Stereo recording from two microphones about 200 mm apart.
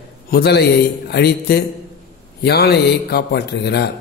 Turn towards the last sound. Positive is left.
turn(degrees=55)  # may be behind; listen again after turning